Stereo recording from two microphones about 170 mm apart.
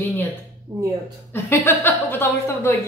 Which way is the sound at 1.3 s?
15° left (ahead or behind).